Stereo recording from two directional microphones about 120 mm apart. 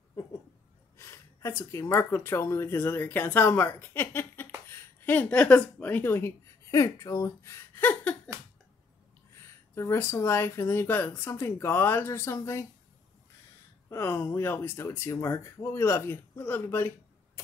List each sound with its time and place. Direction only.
0.9 s speech: 20° left (ahead or behind)
9.4 s speech: 20° left (ahead or behind)
13.8 s speech: 20° left (ahead or behind)